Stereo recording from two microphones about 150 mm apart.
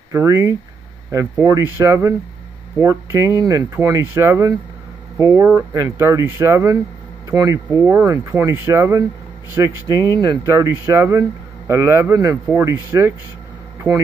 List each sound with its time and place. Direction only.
0.1 s speech: 20° right (ahead or behind)